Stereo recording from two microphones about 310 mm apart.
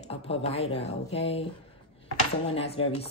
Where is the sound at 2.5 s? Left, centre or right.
Centre.